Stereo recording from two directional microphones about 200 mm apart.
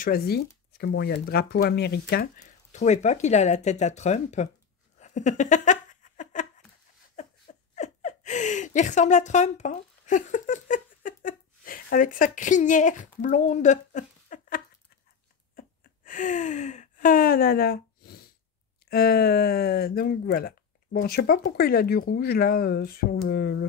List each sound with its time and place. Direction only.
0.0 s speech: 50° left (ahead or behind)
4.9 s a sound: 35° left (ahead or behind)
13.2 s speech: 35° left (ahead or behind)
15.5 s gasp: 40° left (ahead or behind)
18.9 s speech: 50° left (ahead or behind)